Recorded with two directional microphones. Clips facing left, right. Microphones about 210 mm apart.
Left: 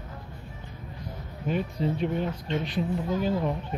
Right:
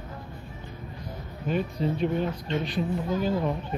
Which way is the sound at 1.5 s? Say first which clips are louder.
Right 1 dB; 20° left (ahead or behind).